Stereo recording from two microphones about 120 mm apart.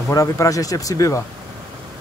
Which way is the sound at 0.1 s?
25° left (ahead or behind).